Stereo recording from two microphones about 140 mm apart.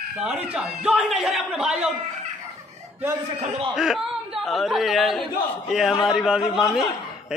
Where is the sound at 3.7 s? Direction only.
Centre (ahead or behind).